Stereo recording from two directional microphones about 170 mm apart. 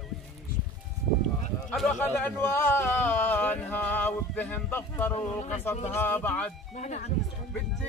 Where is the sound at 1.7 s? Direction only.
5° left (ahead or behind).